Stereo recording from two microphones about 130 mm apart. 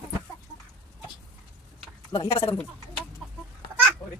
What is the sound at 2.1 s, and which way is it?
Speech, 45° left (ahead or behind).